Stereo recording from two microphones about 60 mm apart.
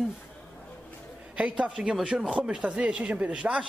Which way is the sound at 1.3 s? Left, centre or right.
Centre.